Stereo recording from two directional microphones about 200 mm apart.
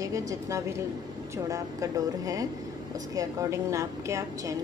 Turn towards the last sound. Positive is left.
turn(degrees=-15)  # may be behind; listen again after turning